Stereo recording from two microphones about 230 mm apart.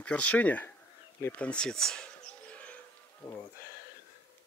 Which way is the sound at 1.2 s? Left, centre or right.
Centre.